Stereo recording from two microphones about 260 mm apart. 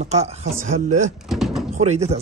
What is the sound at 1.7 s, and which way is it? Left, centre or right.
Speech, right.